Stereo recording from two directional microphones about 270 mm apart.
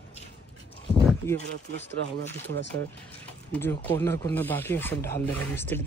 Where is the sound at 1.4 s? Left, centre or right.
Right.